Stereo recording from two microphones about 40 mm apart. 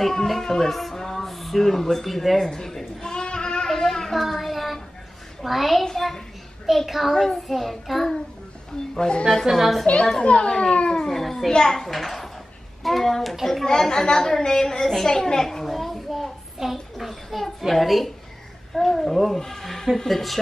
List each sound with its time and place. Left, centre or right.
0.3 s speech: centre
3.0 s a sound: centre
3.6 s a sound: centre
5.4 s a child's voice: centre
5.9 s a sound: centre
6.9 s a child's voice: centre
8.9 s speech: centre
9.5 s a child's voice: centre
10.2 s speech: left
11.0 s a child's voice: centre
13.7 s speech: centre
15.0 s a sound: centre
16.7 s a child's voice: centre